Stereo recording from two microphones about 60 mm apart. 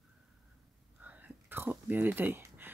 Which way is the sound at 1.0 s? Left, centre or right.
Right.